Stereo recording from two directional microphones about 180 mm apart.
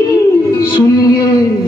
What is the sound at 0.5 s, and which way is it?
Speech, 20° left (ahead or behind).